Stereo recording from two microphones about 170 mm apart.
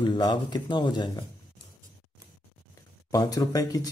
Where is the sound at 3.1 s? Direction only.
20° left (ahead or behind).